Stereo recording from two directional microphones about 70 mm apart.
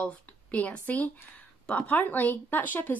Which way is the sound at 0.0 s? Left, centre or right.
Centre.